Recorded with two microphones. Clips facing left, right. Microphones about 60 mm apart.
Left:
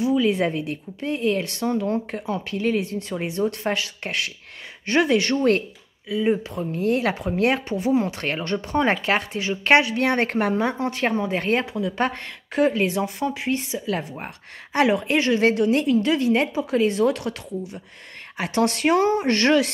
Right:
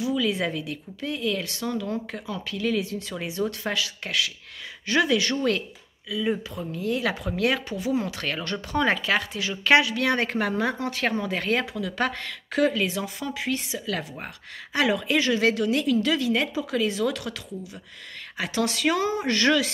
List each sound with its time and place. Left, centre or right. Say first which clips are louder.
0.3 s speech: left 5 dB; left
14.7 s speech: left 4 dB; left
18.4 s speech: left 4 dB; left